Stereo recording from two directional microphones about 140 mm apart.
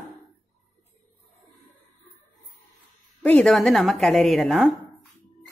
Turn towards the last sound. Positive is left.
turn(degrees=0)  # may be behind; listen again after turning